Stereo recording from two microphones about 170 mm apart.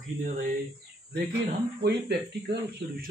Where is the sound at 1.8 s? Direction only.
75° right (ahead or behind).